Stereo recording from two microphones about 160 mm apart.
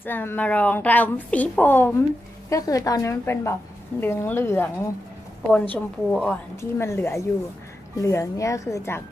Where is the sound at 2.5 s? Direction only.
20° left (ahead or behind).